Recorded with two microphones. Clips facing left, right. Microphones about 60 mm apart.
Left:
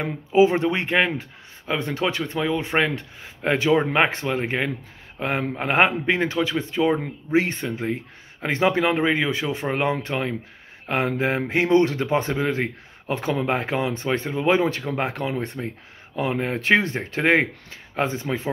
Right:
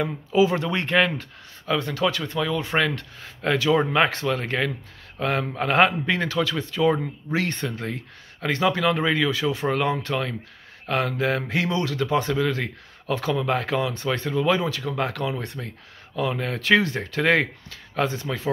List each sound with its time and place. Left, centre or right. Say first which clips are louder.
0.0 s speech: left 3 dB; left
0.8 s speech: even; centre
1.7 s speech: right 1 dB; left
2.9 s speech: left 1 dB; centre
3.4 s speech: left 1 dB; left